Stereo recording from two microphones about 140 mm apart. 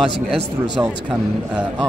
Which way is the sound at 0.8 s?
15° right (ahead or behind).